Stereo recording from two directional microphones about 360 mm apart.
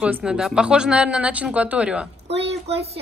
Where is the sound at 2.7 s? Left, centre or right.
Centre.